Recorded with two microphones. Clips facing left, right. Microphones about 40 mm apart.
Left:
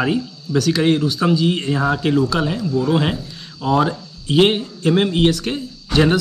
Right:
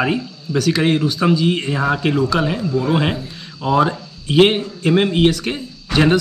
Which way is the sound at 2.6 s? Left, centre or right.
Right.